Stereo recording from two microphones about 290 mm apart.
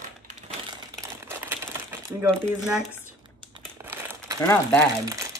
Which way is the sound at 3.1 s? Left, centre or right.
Centre.